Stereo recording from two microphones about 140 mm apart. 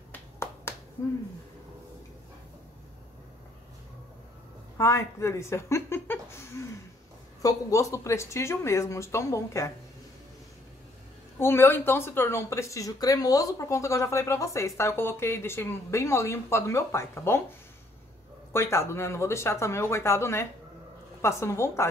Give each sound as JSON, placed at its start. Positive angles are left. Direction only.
{"t": 0.1, "sound": "finger snapping", "side_deg": 15}
{"t": 4.7, "sound": "a woman's voice", "side_deg": 20}
{"t": 11.3, "sound": "a woman's voice", "side_deg": 15}
{"t": 18.5, "sound": "a woman's voice", "side_deg": 20}